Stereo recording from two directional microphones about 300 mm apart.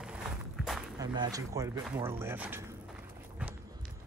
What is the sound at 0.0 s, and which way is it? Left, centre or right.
Walk, centre.